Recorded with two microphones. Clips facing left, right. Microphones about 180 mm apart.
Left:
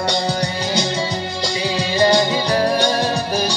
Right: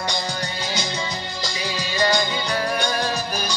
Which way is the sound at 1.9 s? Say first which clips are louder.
Left 6 dB; 30° left (ahead or behind).